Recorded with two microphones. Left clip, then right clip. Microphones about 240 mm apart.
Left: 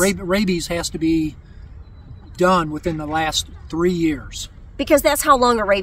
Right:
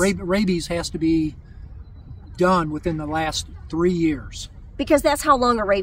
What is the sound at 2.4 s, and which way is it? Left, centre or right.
Speech, centre.